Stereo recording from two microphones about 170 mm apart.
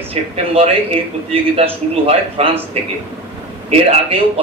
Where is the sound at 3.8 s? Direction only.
35° right (ahead or behind).